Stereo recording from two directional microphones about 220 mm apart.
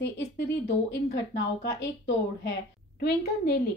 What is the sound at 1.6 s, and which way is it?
Speech, 50° left (ahead or behind).